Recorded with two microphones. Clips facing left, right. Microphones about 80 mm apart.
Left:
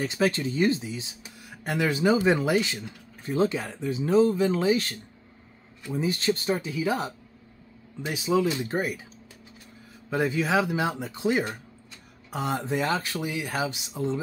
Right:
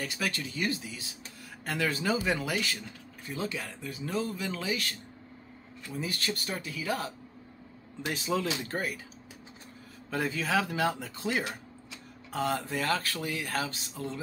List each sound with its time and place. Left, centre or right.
0.0 s speech: left
8.1 s speech: centre
8.6 s speech: centre
10.0 s speech: centre